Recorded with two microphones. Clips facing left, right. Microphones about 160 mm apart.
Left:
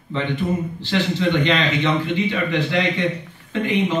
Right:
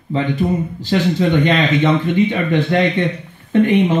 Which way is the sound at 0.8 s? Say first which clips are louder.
Right 6 dB; 45° right (ahead or behind).